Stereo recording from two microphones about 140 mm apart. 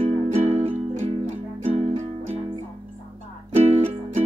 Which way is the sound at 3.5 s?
50° right (ahead or behind).